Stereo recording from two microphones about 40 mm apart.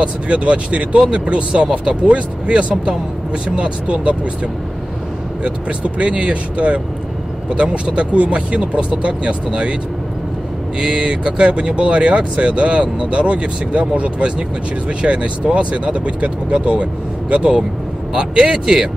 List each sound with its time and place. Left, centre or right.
0.0 s speech: right
5.4 s speech: right
10.8 s speech: right